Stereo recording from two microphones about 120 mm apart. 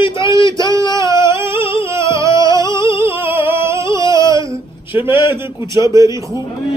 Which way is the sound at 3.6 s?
25° right (ahead or behind).